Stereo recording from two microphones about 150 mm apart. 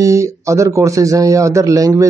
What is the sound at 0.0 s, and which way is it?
A man's voice, 20° right (ahead or behind).